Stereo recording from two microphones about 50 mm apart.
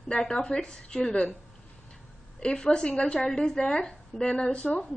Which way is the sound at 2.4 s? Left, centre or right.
Centre.